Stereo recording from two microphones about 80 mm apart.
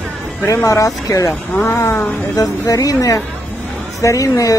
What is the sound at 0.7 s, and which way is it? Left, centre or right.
Speech, left.